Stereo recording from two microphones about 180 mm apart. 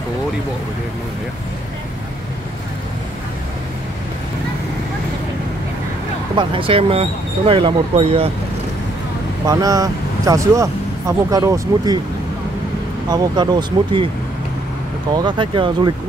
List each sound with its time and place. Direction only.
6.3 s speech: 30° right (ahead or behind)
9.5 s speech: 20° right (ahead or behind)
13.1 s speech: 25° right (ahead or behind)
15.1 s speech: 25° right (ahead or behind)